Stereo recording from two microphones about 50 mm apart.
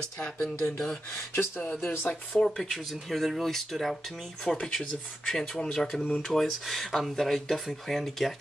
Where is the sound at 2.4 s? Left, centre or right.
Centre.